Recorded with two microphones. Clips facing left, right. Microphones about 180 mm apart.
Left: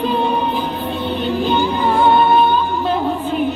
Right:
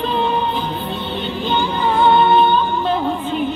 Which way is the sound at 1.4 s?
10° left (ahead or behind).